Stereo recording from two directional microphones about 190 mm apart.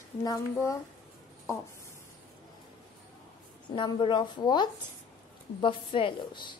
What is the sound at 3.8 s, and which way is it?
A woman's voice, 25° left (ahead or behind).